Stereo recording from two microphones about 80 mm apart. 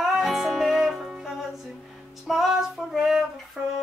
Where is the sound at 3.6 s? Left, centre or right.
Centre.